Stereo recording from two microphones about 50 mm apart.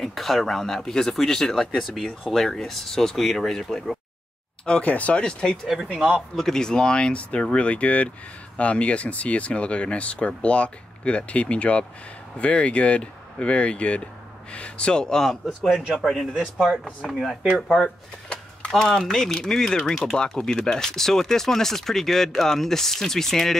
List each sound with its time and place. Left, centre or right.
0.0 s speech: centre
4.8 s speech: left
5.2 s speech: centre
5.9 s speech: centre
6.3 s speech: centre
16.3 s speech: centre
17.1 s speech: centre
17.8 s speech: centre